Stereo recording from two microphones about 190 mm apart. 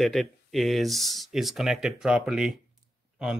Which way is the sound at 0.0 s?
Centre (ahead or behind).